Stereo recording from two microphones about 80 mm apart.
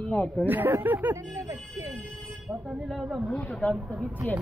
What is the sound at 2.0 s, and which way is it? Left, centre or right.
Speech, centre.